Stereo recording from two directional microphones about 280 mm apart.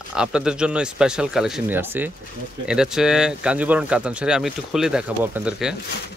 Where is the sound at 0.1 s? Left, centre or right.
Centre.